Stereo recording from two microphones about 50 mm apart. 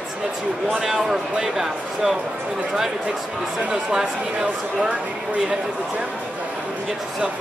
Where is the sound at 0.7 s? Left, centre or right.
Centre.